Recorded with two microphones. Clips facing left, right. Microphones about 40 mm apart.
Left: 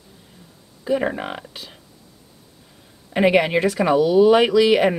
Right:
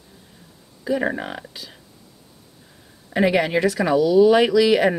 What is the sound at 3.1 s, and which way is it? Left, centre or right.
Speech, left.